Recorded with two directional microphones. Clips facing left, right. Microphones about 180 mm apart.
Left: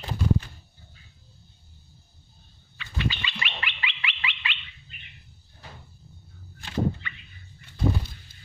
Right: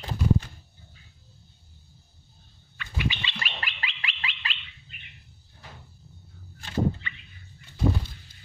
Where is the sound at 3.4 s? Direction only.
40° right (ahead or behind).